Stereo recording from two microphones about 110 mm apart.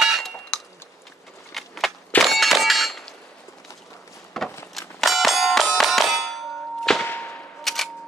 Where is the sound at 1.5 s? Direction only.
Centre (ahead or behind).